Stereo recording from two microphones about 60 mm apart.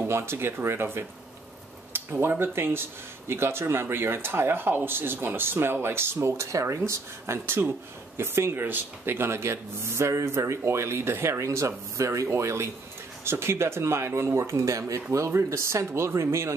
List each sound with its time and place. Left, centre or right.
0.0 s speech: right